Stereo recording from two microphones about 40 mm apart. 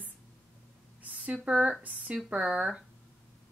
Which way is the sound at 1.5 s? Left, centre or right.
Right.